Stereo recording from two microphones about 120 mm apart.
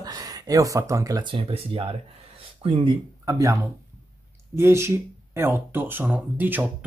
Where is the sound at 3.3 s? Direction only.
30° right (ahead or behind).